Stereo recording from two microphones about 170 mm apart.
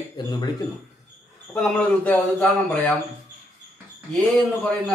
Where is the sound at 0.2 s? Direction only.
25° left (ahead or behind).